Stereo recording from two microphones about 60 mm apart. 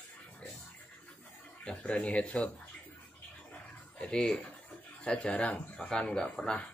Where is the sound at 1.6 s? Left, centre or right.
Centre.